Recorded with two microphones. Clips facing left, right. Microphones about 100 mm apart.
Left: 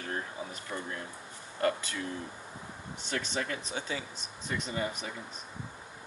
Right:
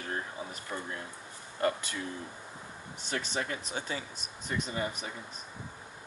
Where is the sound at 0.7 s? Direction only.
15° right (ahead or behind).